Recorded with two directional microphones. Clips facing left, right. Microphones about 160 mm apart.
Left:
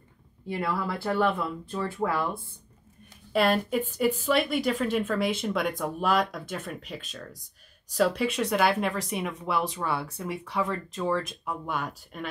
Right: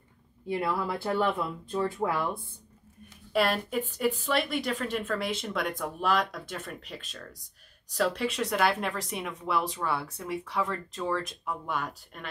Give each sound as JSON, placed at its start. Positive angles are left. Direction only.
{"t": 0.5, "sound": "speech", "side_deg": -15}
{"t": 3.3, "sound": "a woman's voice", "side_deg": 0}